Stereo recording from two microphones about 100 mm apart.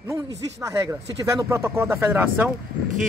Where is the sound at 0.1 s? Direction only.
30° right (ahead or behind).